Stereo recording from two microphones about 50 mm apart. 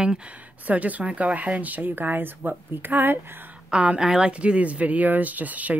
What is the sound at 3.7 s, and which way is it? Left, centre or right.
A woman's voice, right.